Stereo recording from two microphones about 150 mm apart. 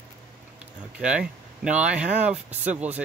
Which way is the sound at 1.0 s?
5° right (ahead or behind).